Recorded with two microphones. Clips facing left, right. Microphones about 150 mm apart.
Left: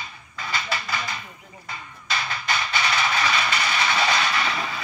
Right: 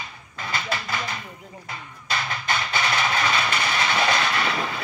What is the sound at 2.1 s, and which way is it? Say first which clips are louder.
Music: right 1 dB; 50° right (ahead or behind).